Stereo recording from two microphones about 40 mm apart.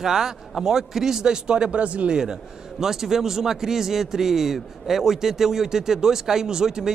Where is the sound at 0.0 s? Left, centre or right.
Centre; by 2.0 s right.